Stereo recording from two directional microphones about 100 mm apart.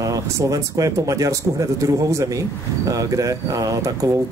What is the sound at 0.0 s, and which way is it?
Speech, 35° right (ahead or behind).